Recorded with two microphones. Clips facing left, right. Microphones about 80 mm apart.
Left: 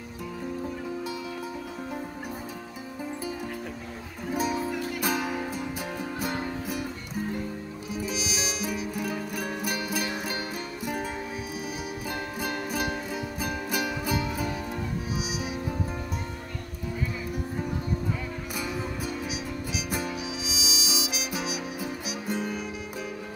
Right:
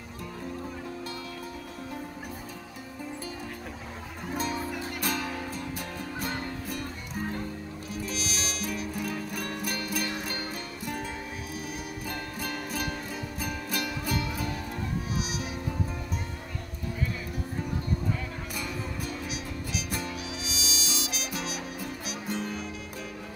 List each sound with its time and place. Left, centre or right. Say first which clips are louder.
4.4 s music: left 4 dB; centre
7.9 s music: left 3 dB; centre
12.4 s music: left 4 dB; centre
18.6 s music: left 4 dB; centre
19.9 s harmonica: left 3 dB; centre